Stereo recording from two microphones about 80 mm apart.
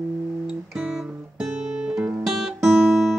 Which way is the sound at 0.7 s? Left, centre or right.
Centre.